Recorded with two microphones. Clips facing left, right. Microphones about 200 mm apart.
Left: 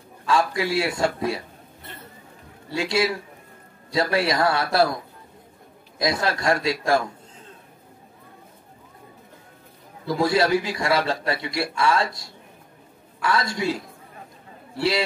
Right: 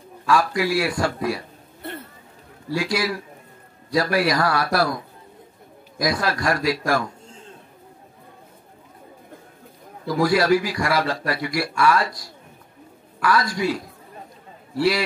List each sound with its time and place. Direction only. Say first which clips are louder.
0.3 s a man's voice: right 2 dB; 25° left (ahead or behind)
2.7 s a man's voice: even; 25° left (ahead or behind)
5.9 s a man's voice: right 1 dB; 25° left (ahead or behind)
10.0 s a man's voice: right 2 dB; 25° left (ahead or behind)